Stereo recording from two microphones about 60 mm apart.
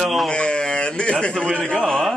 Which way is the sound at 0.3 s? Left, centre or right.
Centre.